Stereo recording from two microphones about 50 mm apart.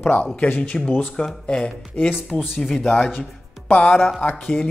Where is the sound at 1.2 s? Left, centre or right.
Centre.